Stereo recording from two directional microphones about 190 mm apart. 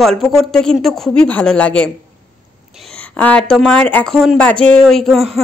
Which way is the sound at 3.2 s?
5° left (ahead or behind).